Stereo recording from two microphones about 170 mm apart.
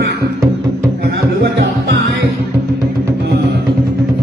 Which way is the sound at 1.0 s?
85° right.